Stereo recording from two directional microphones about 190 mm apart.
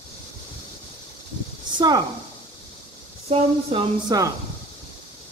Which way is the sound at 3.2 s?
30° right (ahead or behind).